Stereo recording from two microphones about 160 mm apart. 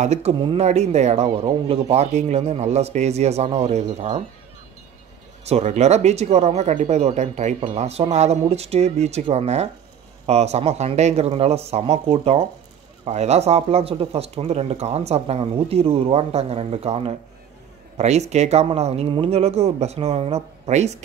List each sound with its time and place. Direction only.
0.0 s speech: 45° right (ahead or behind)
5.4 s speech: 45° right (ahead or behind)